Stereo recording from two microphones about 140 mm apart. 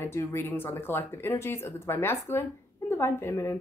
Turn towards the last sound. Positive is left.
turn(degrees=20)  # may be behind; listen again after turning